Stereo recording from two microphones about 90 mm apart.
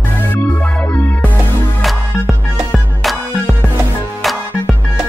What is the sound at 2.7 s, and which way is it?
Music, centre (ahead or behind).